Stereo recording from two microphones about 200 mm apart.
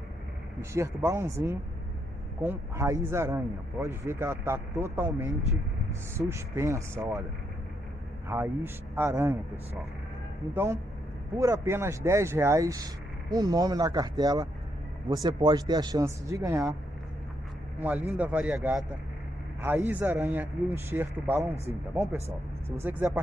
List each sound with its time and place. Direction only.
0.6 s speech: 15° right (ahead or behind)
8.3 s speech: 10° right (ahead or behind)
10.5 s speech: 10° right (ahead or behind)
17.7 s speech: 5° right (ahead or behind)
22.7 s speech: 10° right (ahead or behind)